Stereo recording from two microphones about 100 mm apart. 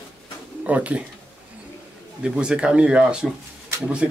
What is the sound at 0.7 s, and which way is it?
Speech, 15° right (ahead or behind).